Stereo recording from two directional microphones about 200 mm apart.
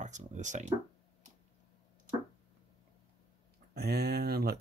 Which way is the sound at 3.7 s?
55° right (ahead or behind).